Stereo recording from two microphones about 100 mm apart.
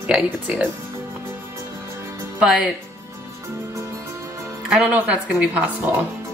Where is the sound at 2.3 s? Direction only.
5° right (ahead or behind).